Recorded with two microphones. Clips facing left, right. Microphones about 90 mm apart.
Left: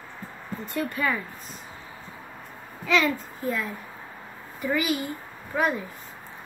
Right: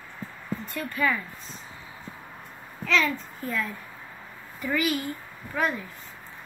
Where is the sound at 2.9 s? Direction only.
10° left (ahead or behind).